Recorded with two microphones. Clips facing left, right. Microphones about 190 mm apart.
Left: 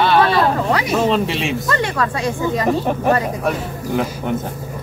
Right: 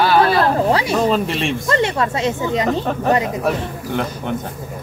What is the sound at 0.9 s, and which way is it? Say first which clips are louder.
Speech: even; centre (ahead or behind).